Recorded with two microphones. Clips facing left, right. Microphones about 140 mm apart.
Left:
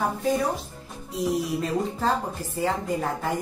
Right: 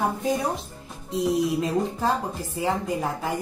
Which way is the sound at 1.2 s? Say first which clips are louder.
Right 3 dB; 15° right (ahead or behind).